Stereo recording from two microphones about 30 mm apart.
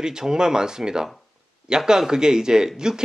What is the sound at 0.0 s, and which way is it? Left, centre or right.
Speech, right.